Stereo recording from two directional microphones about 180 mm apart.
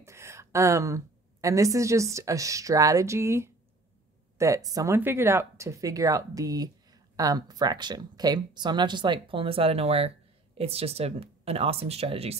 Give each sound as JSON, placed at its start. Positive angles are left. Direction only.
{"t": 0.0, "sound": "a woman's voice", "side_deg": -15}
{"t": 4.6, "sound": "speech", "side_deg": -20}